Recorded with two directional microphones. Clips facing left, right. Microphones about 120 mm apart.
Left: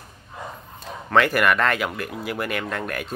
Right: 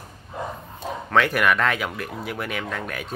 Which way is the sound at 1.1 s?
Centre (ahead or behind).